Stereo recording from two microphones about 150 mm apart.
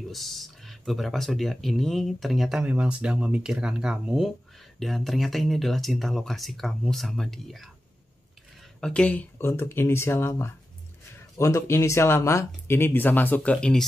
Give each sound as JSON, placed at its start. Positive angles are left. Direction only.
{"t": 0.1, "sound": "speech", "side_deg": 0}
{"t": 8.8, "sound": "speech", "side_deg": 5}